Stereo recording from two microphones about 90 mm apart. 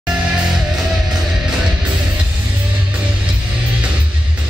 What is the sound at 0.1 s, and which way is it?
Music, 10° right (ahead or behind).